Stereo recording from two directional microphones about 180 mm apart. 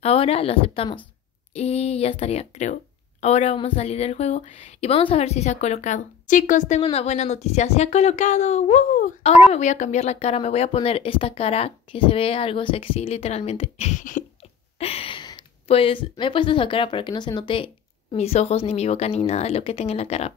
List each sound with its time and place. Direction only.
0.0 s a woman's voice: 35° left (ahead or behind)
14.8 s a woman's voice: 35° left (ahead or behind)